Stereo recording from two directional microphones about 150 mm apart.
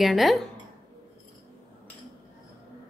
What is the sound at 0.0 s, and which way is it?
Speech, centre (ahead or behind).